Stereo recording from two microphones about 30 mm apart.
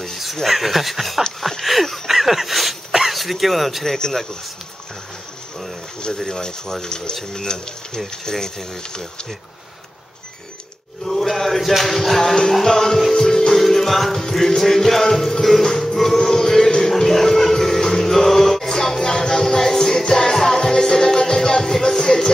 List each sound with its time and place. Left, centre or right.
0.4 s speech: centre
1.6 s a sound: centre
2.9 s dog: centre
3.2 s speech: centre
4.0 s music: centre
6.2 s speech: centre
11.1 s music: centre